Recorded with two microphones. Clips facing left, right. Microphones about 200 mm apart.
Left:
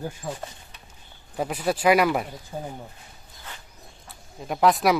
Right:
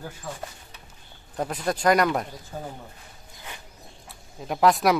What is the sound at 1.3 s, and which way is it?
Speech, 5° left (ahead or behind).